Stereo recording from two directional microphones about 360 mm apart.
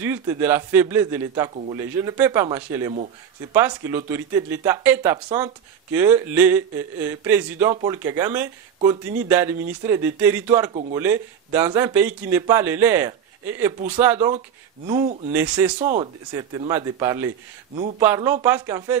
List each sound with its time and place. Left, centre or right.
0.0 s a man's voice: centre
10.7 s a man's voice: centre
11.0 s speech: centre
15.8 s a man's voice: centre